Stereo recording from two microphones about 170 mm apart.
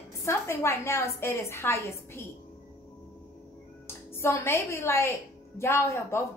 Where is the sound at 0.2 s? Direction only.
15° left (ahead or behind).